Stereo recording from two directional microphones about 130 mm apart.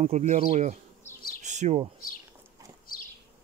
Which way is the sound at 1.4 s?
65° right (ahead or behind).